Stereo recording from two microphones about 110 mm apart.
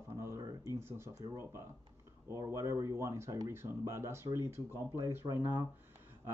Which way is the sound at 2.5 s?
30° right (ahead or behind).